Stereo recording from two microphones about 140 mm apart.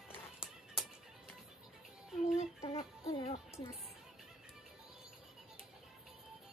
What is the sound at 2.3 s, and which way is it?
Music, 45° left (ahead or behind).